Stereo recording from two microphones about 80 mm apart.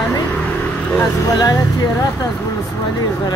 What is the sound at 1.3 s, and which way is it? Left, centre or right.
Speech, left.